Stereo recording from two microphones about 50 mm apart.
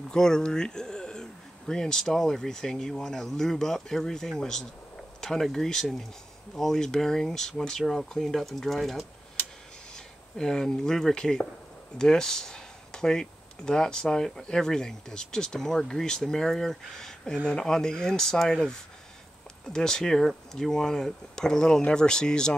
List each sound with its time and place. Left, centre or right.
0.1 s speech: centre